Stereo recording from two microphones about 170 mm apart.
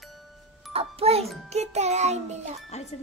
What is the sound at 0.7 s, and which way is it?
Speech, 35° right (ahead or behind).